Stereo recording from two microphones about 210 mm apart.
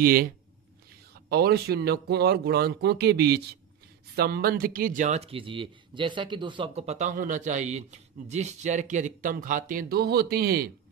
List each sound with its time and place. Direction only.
0.0 s speech: 45° right (ahead or behind)